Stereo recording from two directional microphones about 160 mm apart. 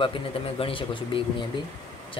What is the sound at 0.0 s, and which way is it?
A man's voice, 35° left (ahead or behind).